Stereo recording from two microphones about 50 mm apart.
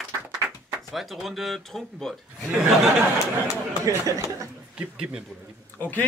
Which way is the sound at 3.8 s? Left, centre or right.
Right.